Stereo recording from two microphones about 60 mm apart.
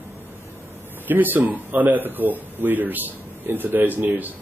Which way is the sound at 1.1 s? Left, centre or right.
Right.